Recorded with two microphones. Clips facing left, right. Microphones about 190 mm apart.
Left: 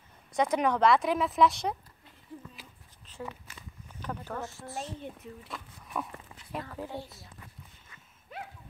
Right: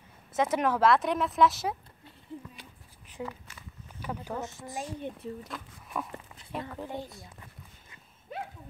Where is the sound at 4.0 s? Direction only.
10° right (ahead or behind).